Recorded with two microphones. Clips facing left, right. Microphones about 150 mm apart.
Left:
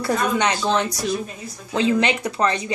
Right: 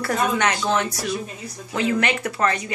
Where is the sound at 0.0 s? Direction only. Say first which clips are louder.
Left 1 dB; 15° left (ahead or behind).